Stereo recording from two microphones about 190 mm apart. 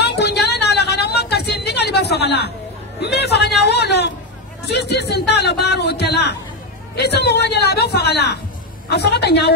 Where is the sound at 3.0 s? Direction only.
60° left (ahead or behind).